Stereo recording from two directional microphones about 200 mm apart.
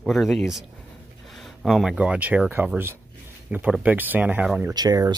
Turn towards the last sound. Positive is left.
turn(degrees=-20)  # may be behind; listen again after turning